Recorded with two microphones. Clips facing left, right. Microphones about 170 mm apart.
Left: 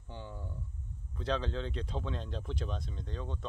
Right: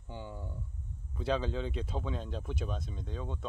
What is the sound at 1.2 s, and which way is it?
Speech, 10° right (ahead or behind).